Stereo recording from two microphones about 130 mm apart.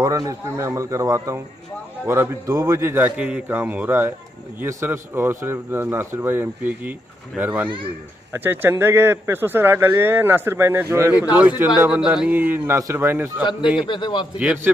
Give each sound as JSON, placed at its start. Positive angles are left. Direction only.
{"t": 0.0, "sound": "speech", "side_deg": -25}
{"t": 13.4, "sound": "a man's voice", "side_deg": 35}
{"t": 14.4, "sound": "speech", "side_deg": -10}